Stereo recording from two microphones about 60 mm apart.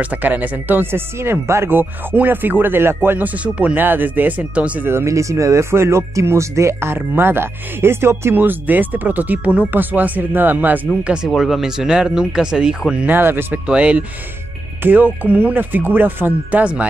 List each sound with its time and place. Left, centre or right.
0.0 s speech: right
3.4 s speech: right
4.8 s speech: right
5.1 s speech: right
8.4 s speech: right
11.2 s speech: centre
13.0 s speech: right
13.7 s speech: centre
14.8 s speech: right